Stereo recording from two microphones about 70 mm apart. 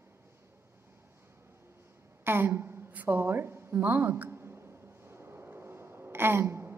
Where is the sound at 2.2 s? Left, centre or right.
Right.